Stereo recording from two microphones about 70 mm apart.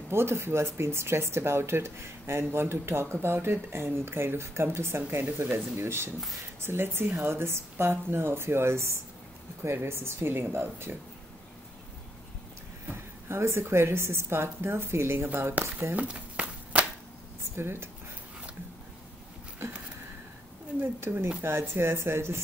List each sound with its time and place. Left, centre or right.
0.1 s speech: right
13.3 s speech: right
15.2 s speech: right
16.0 s a sound: right
17.6 s speech: right
20.8 s speech: right